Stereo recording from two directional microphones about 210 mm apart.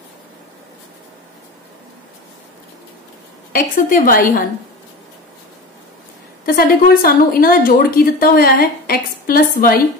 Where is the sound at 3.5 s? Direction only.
40° left (ahead or behind).